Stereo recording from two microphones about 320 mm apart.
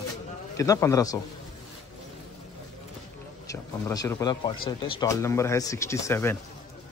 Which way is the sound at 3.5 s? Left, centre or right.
Centre.